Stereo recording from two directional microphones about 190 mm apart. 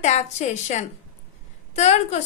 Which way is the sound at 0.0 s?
35° left (ahead or behind).